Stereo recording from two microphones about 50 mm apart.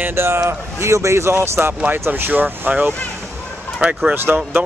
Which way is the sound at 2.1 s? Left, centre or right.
Right.